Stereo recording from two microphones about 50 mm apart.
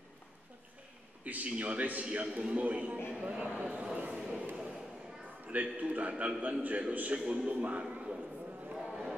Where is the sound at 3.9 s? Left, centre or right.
Right.